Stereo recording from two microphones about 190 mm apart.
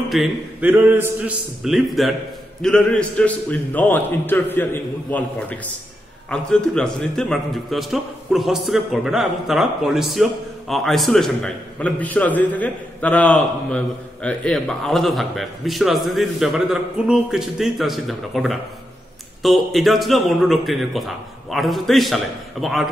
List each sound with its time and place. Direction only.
0.1 s a man's voice: 5° right (ahead or behind)
6.3 s a man's voice: 5° left (ahead or behind)